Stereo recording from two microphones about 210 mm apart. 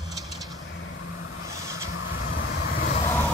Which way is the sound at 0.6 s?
65° left (ahead or behind).